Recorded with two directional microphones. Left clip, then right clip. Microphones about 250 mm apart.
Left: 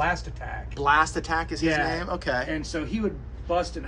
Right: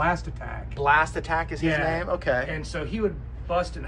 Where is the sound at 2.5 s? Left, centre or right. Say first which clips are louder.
Left 1 dB; left.